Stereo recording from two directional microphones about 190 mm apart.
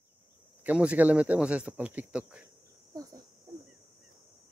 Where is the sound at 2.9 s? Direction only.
20° right (ahead or behind).